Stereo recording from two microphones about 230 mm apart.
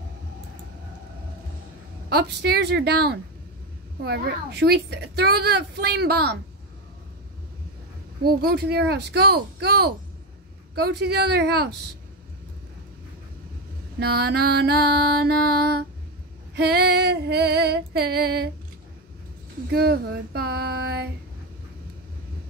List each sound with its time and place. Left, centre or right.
2.0 s a woman's voice: right
8.2 s a woman's voice: right
13.9 s a woman's voice: right
19.7 s a woman's voice: right